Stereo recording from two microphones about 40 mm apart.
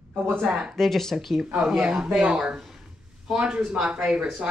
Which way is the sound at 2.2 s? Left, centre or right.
Right.